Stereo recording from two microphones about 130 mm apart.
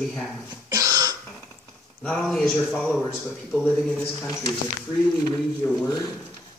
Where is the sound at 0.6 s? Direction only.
25° right (ahead or behind).